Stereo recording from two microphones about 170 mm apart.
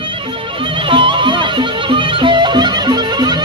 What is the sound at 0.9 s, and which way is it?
Music, 30° right (ahead or behind).